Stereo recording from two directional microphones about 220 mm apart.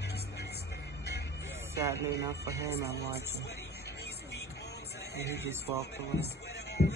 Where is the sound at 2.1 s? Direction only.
50° left (ahead or behind).